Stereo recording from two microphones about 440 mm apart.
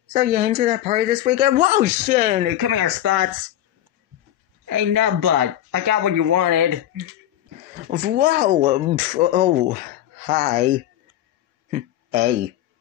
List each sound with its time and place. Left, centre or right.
0.1 s speech: centre
2.6 s speech: right
3.0 s speech: right
4.6 s speech: right
7.9 s speech: right
11.7 s a sound: centre